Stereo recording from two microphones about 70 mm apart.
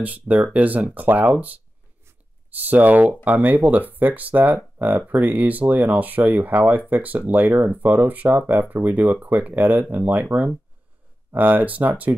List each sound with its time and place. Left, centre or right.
0.0 s speech: right
2.6 s speech: right
12.1 s speech: right